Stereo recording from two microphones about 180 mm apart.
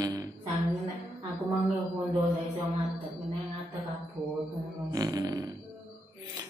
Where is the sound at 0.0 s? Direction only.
20° right (ahead or behind).